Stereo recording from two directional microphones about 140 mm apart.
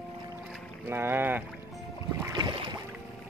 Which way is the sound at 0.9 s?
15° right (ahead or behind).